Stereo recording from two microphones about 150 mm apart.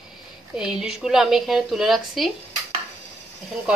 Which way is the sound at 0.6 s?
5° right (ahead or behind).